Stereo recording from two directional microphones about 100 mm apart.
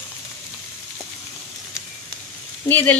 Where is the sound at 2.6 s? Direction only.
15° left (ahead or behind).